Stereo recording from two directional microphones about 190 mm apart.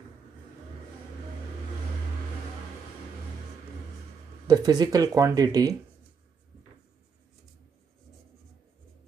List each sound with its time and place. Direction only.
4.5 s speech: 20° right (ahead or behind)